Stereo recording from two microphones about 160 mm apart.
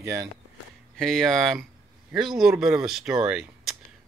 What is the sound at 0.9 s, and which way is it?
Speech, centre (ahead or behind).